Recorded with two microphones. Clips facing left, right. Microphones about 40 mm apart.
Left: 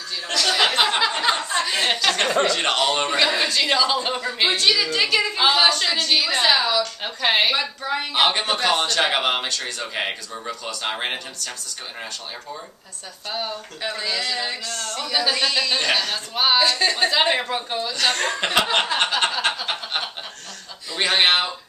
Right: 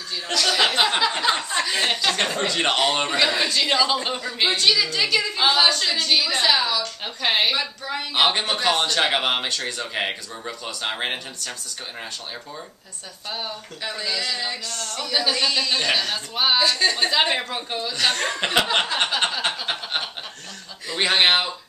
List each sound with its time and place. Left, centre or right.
0.3 s a sound: centre
2.4 s speech: centre
3.1 s a woman's voice: centre
6.4 s a woman's voice: centre
8.1 s a man's voice: centre
13.8 s a man's voice: centre